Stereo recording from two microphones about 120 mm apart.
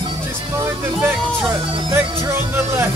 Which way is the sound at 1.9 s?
20° right (ahead or behind).